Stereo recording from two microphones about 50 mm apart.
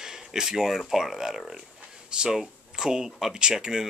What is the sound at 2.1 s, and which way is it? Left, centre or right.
Speech, centre.